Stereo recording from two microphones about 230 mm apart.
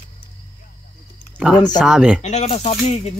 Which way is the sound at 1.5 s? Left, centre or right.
Centre.